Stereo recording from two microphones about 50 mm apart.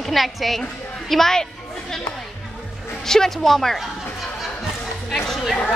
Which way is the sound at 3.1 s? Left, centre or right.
Centre.